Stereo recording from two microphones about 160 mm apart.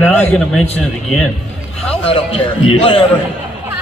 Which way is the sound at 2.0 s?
35° left (ahead or behind).